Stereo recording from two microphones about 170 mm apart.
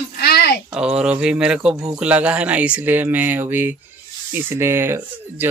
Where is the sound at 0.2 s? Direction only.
70° left (ahead or behind).